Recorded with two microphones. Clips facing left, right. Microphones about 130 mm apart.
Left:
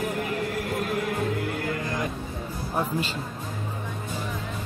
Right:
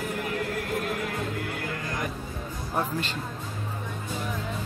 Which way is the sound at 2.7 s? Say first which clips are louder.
Left 1 dB; 5° left (ahead or behind).